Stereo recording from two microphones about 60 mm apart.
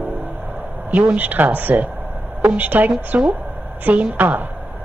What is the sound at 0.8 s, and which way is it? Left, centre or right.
Speech, right.